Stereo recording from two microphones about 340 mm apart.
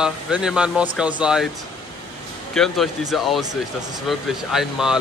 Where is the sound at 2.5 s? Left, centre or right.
Centre.